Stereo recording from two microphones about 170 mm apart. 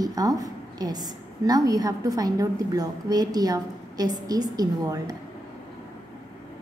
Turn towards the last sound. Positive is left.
turn(degrees=-20)  # may be behind; listen again after turning